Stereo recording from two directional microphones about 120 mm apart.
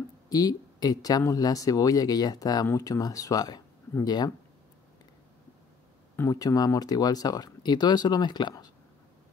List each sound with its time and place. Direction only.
0.3 s speech: 30° left (ahead or behind)
6.1 s speech: 30° left (ahead or behind)